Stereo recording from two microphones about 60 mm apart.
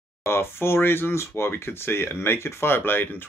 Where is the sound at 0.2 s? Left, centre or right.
Left.